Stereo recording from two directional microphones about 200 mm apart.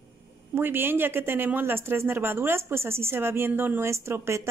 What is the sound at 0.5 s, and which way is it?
Speech, 10° right (ahead or behind).